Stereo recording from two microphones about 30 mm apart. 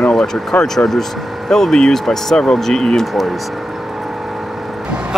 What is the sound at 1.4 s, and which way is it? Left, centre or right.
Speech, centre.